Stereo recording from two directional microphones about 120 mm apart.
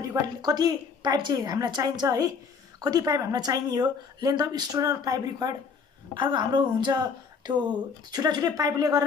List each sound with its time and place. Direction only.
0.0 s a woman's voice: 30° right (ahead or behind)